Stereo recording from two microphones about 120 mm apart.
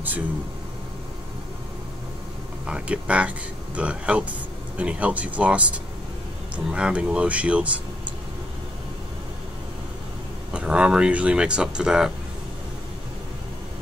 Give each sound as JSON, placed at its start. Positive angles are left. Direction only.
{"t": 2.6, "sound": "speech", "side_deg": -10}
{"t": 10.5, "sound": "speech", "side_deg": -10}